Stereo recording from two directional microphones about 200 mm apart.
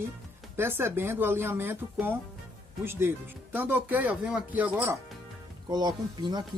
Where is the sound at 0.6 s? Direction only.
10° right (ahead or behind).